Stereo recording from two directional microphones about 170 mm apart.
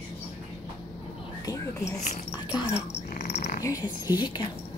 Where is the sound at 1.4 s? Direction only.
20° left (ahead or behind).